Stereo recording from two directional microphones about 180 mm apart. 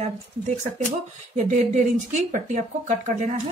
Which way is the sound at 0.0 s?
40° right (ahead or behind).